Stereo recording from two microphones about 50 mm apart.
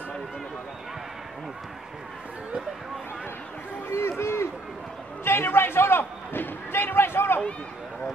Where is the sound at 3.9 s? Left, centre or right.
Left.